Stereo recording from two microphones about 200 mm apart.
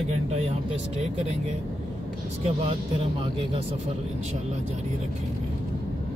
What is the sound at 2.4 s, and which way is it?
Speech, 30° right (ahead or behind).